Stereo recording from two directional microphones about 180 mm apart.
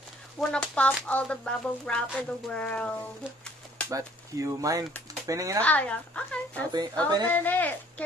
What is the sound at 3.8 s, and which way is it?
Speech, 20° right (ahead or behind).